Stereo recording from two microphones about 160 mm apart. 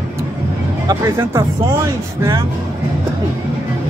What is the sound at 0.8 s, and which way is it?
Speech, 20° right (ahead or behind).